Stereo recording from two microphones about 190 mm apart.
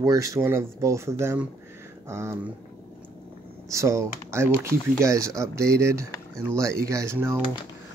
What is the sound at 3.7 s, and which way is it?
Speech, 15° right (ahead or behind).